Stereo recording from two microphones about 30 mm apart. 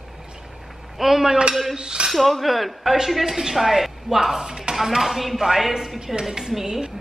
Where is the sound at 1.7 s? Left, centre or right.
Right.